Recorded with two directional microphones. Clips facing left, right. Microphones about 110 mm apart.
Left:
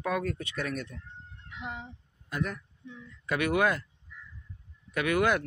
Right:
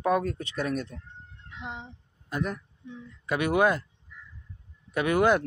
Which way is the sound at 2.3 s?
25° right (ahead or behind).